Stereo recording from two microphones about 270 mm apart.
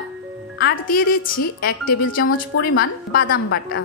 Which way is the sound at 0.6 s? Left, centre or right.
Left.